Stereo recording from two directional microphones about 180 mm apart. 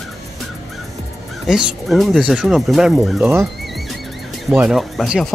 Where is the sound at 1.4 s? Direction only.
Centre (ahead or behind).